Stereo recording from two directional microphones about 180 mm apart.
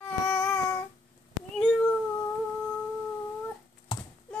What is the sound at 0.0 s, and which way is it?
Child singing, 5° left (ahead or behind).